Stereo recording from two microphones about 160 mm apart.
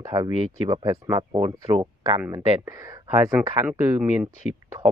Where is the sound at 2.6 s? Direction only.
20° right (ahead or behind).